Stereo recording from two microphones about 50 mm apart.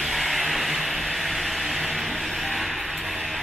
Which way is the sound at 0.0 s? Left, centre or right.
Centre.